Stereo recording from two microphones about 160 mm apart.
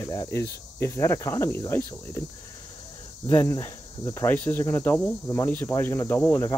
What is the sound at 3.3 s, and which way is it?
Speech, 15° left (ahead or behind).